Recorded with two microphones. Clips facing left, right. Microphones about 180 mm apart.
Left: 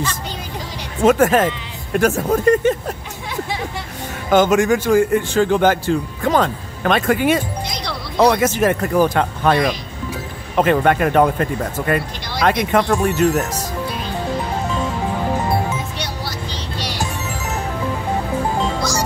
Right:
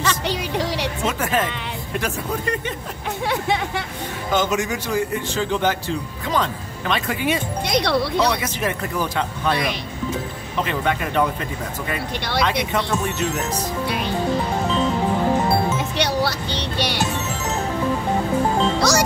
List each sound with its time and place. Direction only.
1.0 s a man's voice: 50° left (ahead or behind)
4.3 s a man's voice: 55° left (ahead or behind)
7.7 s speech: 65° right (ahead or behind)
8.3 s a man's voice: 50° left (ahead or behind)
16.0 s music: 65° right (ahead or behind)
18.8 s music: 70° right (ahead or behind)